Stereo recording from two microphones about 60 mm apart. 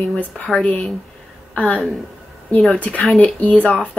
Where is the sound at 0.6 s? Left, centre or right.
Left.